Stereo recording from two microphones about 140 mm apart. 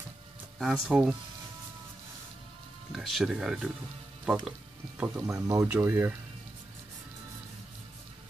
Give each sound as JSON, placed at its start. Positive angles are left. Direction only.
{"t": 0.6, "sound": "speech", "side_deg": -5}
{"t": 2.9, "sound": "speech", "side_deg": 0}
{"t": 5.3, "sound": "speech", "side_deg": -20}